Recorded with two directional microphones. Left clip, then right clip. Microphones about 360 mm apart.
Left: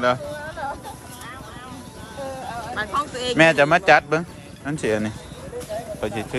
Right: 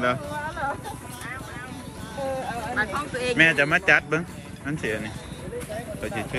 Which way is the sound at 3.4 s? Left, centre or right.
Centre.